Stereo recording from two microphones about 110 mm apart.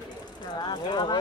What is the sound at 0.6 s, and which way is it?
Speech, 40° left (ahead or behind).